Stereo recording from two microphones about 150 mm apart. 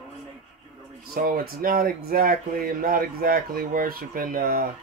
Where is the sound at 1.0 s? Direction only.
85° right.